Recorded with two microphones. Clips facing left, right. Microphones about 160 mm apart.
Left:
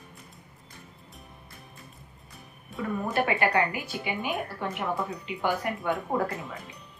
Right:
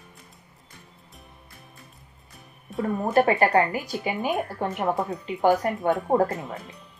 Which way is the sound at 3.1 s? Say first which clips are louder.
Right 6 dB; 40° right (ahead or behind).